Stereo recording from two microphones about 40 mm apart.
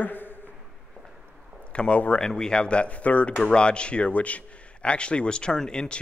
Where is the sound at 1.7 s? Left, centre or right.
Left.